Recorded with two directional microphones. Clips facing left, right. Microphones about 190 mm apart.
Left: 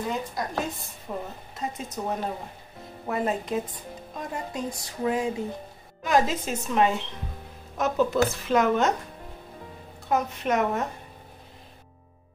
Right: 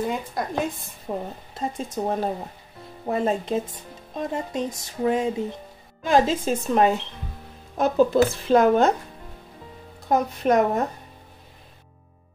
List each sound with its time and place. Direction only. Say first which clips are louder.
0.4 s speech: right 3 dB; 55° right (ahead or behind)
1.1 s speech: right 4 dB; 40° right (ahead or behind)
10.0 s speech: right 5 dB; 35° right (ahead or behind)